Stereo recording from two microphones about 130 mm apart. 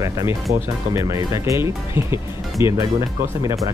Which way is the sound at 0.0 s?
25° right (ahead or behind).